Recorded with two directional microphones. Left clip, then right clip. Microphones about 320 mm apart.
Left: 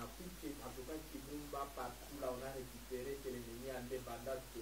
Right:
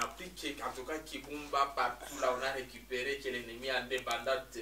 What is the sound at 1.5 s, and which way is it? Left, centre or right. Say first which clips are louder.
Speech: right 15 dB; centre.